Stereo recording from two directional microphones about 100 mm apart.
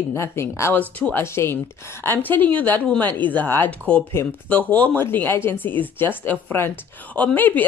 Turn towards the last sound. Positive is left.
turn(degrees=15)  # may be behind; listen again after turning